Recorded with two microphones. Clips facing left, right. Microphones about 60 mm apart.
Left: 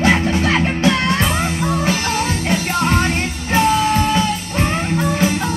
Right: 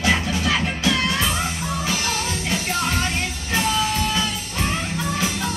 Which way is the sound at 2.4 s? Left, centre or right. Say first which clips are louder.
Left 5 dB; left.